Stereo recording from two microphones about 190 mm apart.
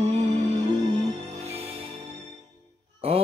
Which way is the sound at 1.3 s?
35° right (ahead or behind).